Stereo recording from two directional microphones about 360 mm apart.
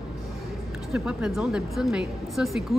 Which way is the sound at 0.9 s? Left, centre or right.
Centre.